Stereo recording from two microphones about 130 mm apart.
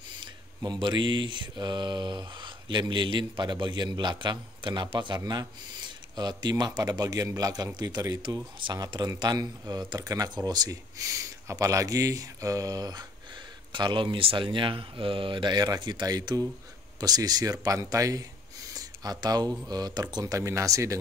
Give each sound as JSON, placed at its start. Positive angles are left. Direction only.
{"t": 0.2, "sound": "mantra", "side_deg": -35}
{"t": 11.4, "sound": "speech", "side_deg": -25}
{"t": 13.7, "sound": "mantra", "side_deg": -35}
{"t": 17.0, "sound": "speech", "side_deg": -30}